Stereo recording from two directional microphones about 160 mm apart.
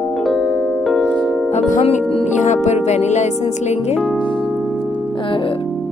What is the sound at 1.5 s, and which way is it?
Music, 45° left (ahead or behind).